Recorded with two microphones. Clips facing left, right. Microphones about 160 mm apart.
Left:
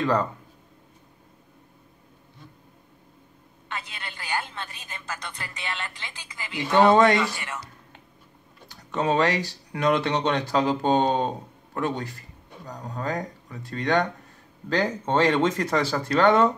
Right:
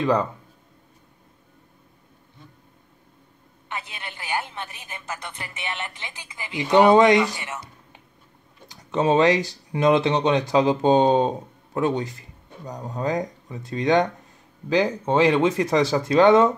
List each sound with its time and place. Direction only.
0.0 s speech: 10° right (ahead or behind)
3.6 s a woman's voice: 20° right (ahead or behind)